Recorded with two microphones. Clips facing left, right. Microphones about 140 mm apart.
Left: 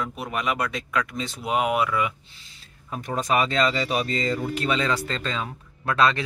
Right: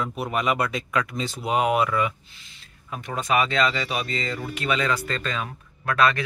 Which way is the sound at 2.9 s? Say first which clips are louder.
Left 1 dB; 40° left (ahead or behind).